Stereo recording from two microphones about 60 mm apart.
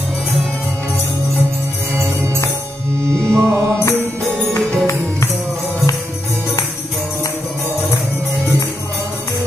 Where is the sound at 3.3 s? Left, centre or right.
Right.